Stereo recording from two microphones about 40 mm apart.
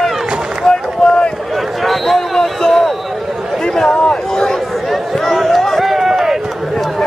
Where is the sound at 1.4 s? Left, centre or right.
Centre.